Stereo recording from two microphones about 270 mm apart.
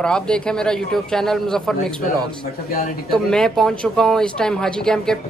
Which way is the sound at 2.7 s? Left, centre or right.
Left.